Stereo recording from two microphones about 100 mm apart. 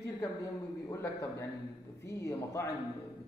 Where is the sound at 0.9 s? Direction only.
30° left (ahead or behind).